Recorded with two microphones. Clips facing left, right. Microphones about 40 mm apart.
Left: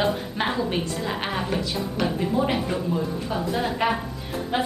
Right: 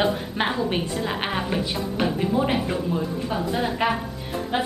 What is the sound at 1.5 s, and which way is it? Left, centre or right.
A woman's voice, centre.